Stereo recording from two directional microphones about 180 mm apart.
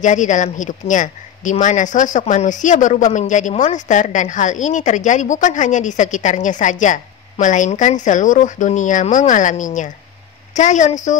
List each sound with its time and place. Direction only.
0.0 s a woman's voice: 45° left (ahead or behind)